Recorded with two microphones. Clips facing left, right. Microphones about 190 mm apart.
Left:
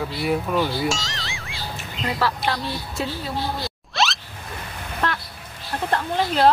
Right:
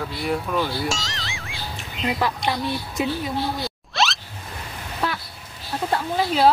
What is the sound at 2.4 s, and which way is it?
Speech, 15° right (ahead or behind).